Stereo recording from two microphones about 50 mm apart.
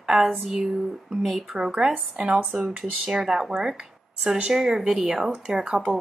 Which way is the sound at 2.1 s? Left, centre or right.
Right.